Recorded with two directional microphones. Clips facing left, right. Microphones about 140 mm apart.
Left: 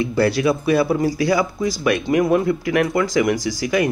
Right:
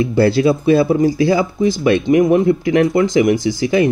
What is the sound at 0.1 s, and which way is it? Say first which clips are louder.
Speech: right 5 dB; 30° right (ahead or behind).